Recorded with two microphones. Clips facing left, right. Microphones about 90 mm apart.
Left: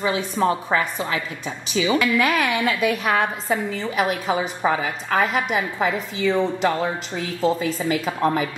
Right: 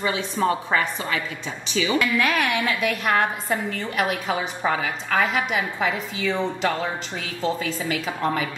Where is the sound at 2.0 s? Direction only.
5° left (ahead or behind).